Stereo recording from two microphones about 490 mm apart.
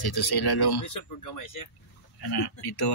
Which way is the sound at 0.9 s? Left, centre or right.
Left.